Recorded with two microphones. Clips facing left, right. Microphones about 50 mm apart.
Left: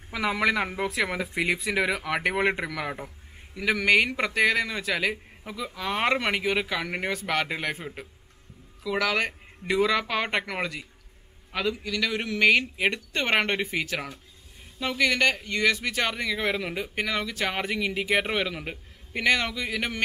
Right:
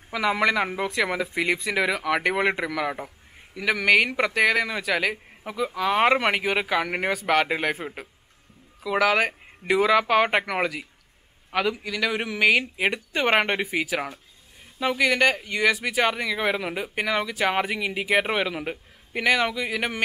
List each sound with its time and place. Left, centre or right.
0.1 s speech: centre
5.4 s speech: centre